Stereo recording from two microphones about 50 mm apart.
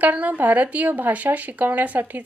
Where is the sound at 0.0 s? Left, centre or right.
Right.